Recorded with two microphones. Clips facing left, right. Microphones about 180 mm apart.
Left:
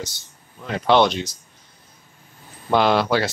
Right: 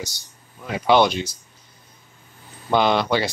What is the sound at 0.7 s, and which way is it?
Speech, 5° right (ahead or behind).